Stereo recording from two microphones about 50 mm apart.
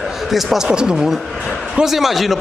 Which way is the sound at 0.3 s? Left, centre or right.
Centre.